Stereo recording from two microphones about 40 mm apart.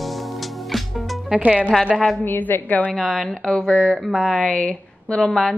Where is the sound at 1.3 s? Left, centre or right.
Right.